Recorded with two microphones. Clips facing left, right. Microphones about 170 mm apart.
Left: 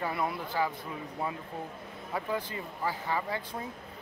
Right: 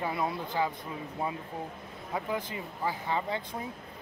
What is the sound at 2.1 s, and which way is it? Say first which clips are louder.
Speech: even; 20° right (ahead or behind).